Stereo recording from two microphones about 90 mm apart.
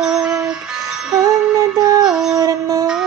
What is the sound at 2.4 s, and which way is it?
Music, 40° right (ahead or behind).